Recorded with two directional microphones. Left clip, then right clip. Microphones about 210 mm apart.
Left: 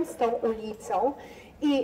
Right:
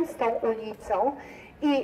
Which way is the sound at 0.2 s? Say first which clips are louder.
Left 1 dB; 50° left (ahead or behind).